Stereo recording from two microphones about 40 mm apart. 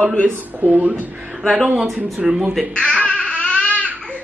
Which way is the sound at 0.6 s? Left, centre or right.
Right.